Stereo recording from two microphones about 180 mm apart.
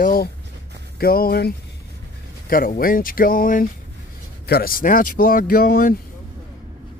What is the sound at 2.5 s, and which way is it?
Speech, 55° left (ahead or behind).